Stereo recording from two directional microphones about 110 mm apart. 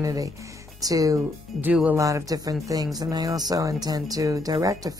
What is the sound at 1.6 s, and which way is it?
Speech, 15° right (ahead or behind).